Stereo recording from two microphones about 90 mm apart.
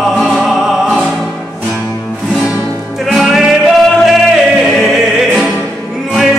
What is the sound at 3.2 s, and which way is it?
Music, 5° right (ahead or behind).